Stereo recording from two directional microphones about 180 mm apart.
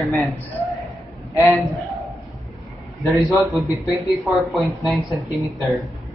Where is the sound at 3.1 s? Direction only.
Centre (ahead or behind).